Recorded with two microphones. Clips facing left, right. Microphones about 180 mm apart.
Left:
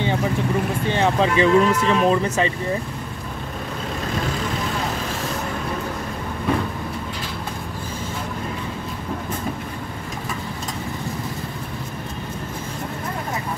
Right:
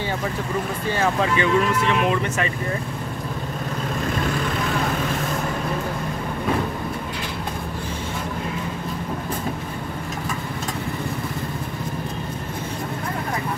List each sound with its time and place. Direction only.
0.8 s speech: 20° left (ahead or behind)